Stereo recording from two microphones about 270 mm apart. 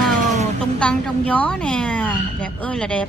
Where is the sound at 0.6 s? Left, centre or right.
Centre.